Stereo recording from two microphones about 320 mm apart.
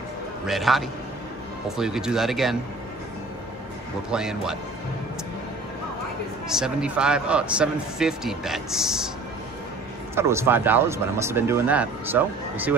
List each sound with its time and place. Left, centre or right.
0.5 s speech: centre
4.1 s speech: centre
6.5 s speech: centre
10.1 s speech: centre